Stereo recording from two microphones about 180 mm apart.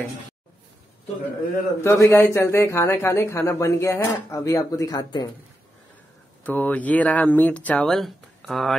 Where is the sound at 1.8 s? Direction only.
15° left (ahead or behind).